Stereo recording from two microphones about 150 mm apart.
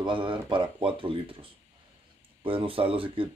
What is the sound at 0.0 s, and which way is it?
Speech, 35° right (ahead or behind).